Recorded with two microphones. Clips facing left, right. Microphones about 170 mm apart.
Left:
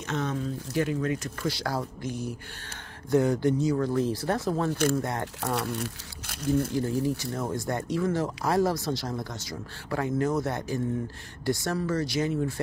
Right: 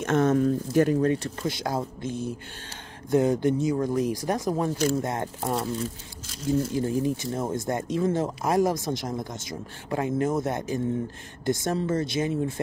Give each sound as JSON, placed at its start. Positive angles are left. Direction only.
{"t": 0.0, "sound": "speech", "side_deg": -50}
{"t": 5.6, "sound": "speech", "side_deg": 70}
{"t": 6.7, "sound": "speech", "side_deg": -20}